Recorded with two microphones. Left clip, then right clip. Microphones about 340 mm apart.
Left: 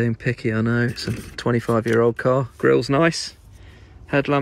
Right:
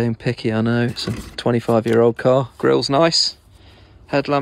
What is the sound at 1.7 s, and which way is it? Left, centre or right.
Speech, right.